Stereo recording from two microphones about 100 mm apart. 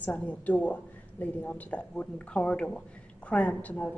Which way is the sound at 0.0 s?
15° left (ahead or behind).